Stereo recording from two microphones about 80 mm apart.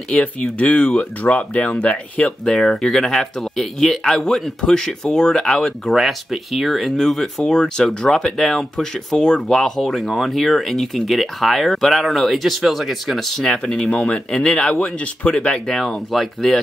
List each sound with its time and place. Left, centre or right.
0.1 s speech: centre